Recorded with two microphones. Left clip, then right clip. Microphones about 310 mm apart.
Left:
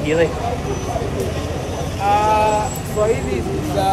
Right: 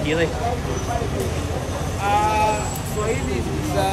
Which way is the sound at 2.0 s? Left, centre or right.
Centre.